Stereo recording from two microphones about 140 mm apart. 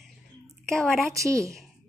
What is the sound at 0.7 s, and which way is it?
Speech, centre (ahead or behind).